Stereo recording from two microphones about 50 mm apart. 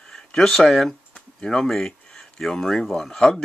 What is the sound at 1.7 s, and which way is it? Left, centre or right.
Speech, centre.